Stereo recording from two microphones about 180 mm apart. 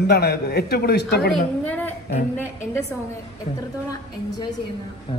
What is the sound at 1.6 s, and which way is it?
Speech, 10° left (ahead or behind).